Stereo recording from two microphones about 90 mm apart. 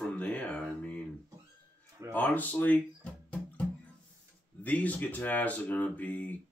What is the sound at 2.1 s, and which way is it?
Speech, 20° left (ahead or behind).